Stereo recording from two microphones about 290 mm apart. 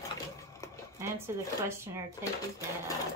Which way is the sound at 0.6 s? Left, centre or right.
Centre.